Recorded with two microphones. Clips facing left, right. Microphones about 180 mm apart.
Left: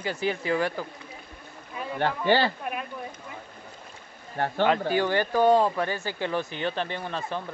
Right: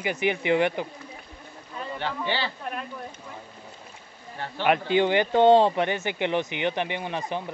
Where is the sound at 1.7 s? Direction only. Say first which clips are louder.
Left 1 dB; 10° left (ahead or behind).